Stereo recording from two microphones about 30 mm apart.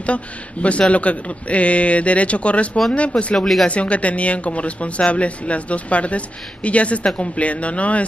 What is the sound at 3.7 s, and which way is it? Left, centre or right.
Speech, left.